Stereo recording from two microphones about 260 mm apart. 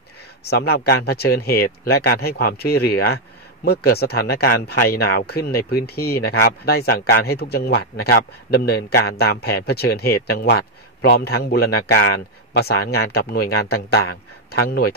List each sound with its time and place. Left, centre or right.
0.4 s speech: left